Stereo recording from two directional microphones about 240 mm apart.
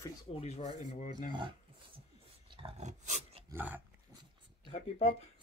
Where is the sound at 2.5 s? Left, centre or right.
Right.